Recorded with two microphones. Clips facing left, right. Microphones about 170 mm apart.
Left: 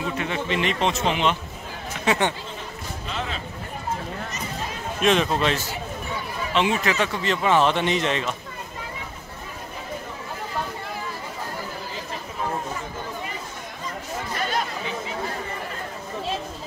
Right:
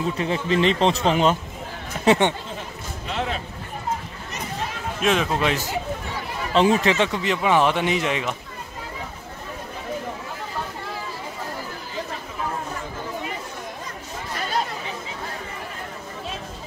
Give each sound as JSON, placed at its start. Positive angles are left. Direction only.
{"t": 0.2, "sound": "speech", "side_deg": -30}
{"t": 2.0, "sound": "speech", "side_deg": -25}
{"t": 5.0, "sound": "a man's voice", "side_deg": -5}
{"t": 6.5, "sound": "speech", "side_deg": -35}
{"t": 7.2, "sound": "speech", "side_deg": -15}